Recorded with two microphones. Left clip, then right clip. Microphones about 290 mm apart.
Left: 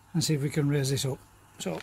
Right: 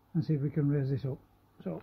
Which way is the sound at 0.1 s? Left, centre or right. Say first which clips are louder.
Left 5 dB; centre.